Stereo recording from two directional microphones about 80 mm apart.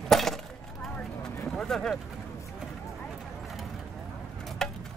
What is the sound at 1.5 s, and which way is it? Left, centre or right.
Vehicle, centre.